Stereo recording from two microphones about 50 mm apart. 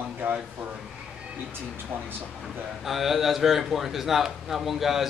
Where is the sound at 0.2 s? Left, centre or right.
Right.